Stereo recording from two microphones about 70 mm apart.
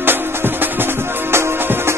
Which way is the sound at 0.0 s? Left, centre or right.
Right.